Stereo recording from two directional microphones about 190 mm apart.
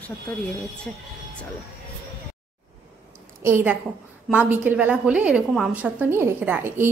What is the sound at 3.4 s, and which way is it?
A woman's voice, 10° right (ahead or behind).